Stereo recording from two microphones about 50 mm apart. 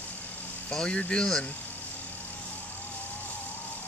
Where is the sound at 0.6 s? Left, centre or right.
Centre.